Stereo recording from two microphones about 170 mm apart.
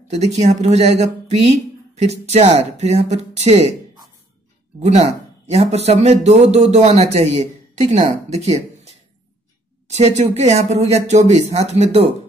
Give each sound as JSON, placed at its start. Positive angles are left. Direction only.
{"t": 0.1, "sound": "speech", "side_deg": -40}
{"t": 4.7, "sound": "speech", "side_deg": -40}